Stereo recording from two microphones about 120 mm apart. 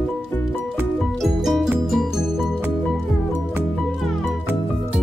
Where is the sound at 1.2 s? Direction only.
Centre (ahead or behind).